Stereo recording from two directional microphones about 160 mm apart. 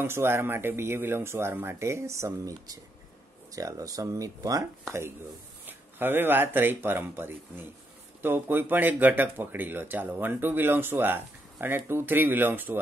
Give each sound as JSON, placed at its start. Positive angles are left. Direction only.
{"t": 0.0, "sound": "speech", "side_deg": -15}
{"t": 5.7, "sound": "speech", "side_deg": -10}